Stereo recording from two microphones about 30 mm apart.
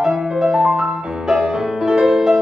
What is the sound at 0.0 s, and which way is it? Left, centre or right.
Music, right.